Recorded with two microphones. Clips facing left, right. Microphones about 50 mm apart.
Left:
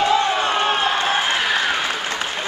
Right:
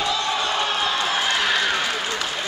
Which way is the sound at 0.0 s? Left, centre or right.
Left.